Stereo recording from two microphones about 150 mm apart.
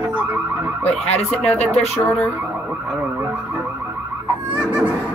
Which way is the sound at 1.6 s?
45° left (ahead or behind).